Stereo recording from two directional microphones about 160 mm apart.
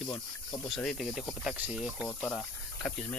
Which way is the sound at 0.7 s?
Centre (ahead or behind).